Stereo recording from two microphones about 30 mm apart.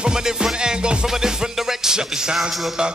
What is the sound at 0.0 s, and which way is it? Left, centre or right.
Music, right.